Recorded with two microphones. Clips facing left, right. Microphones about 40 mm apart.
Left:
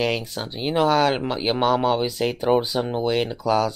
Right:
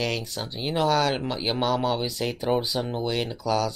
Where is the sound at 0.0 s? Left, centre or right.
Centre.